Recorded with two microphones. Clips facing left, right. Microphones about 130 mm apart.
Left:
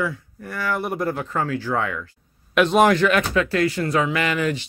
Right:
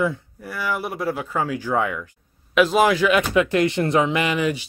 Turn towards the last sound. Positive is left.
turn(degrees=-10)  # may be behind; listen again after turning